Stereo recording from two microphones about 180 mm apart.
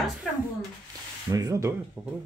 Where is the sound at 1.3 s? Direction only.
20° right (ahead or behind).